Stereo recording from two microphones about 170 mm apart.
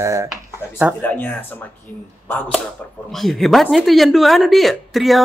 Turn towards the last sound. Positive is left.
turn(degrees=0)  # may be behind; listen again after turning